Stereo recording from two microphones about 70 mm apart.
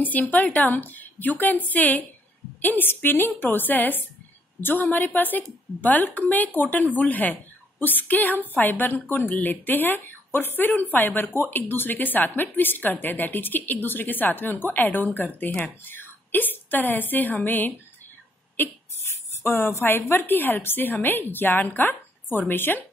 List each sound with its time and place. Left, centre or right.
0.3 s a woman's voice: left
19.4 s a woman's voice: left